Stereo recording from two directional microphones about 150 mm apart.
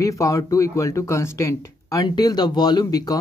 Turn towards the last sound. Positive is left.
turn(degrees=25)  # may be behind; listen again after turning